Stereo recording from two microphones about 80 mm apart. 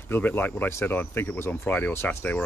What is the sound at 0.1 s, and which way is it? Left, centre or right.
Speech, left.